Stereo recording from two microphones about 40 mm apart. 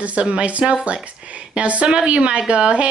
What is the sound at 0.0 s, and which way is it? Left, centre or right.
Speech, right.